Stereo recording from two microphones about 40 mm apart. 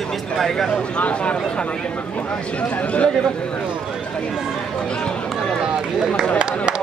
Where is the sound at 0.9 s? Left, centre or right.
Left.